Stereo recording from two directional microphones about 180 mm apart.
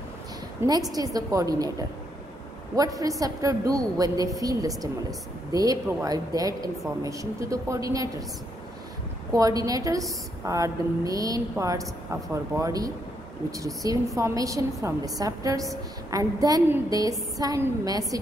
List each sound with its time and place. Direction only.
0.6 s a woman's voice: 20° right (ahead or behind)
9.3 s a woman's voice: 20° right (ahead or behind)